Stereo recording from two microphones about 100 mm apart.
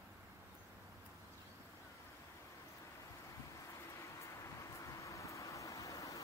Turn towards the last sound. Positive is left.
turn(degrees=35)  # may be behind; listen again after turning